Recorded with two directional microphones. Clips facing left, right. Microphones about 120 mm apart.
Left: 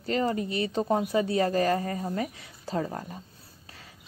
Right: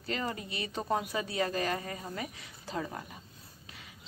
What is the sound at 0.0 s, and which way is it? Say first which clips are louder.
Speech: left 9 dB; 35° left (ahead or behind).